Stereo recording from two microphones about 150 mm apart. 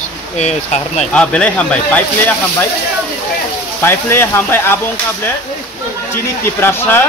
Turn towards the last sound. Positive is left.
turn(degrees=15)  # may be behind; listen again after turning